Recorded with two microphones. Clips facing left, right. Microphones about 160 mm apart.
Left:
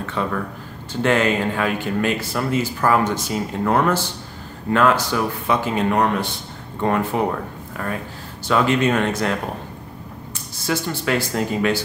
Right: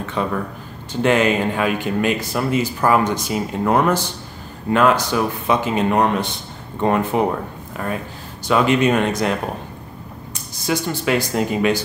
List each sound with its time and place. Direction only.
0.0 s speech: 15° right (ahead or behind)